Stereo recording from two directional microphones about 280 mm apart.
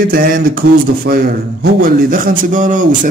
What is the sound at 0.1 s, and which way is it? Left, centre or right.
Speech, right.